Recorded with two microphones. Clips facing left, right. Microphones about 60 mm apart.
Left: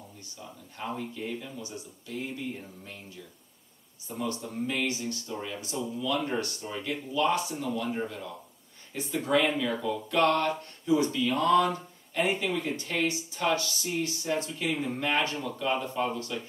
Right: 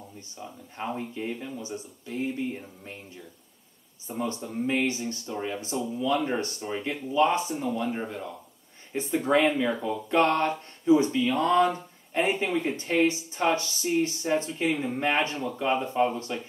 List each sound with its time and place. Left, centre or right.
0.4 s speech: right
4.4 s speech: centre
4.6 s speech: right